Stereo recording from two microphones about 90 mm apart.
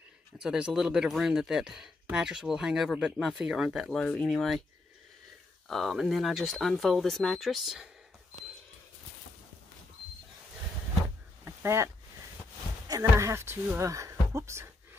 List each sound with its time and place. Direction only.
0.4 s speech: 10° right (ahead or behind)
3.9 s speech: 5° left (ahead or behind)
5.7 s speech: centre (ahead or behind)
11.4 s a sound: 30° right (ahead or behind)
12.8 s speech: 45° right (ahead or behind)
13.3 s speech: 30° right (ahead or behind)